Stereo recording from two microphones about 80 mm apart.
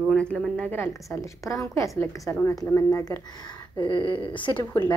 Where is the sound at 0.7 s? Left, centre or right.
Left.